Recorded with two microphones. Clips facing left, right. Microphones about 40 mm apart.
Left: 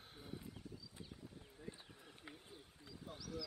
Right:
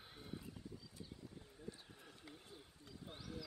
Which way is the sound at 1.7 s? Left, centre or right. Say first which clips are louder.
Even; left.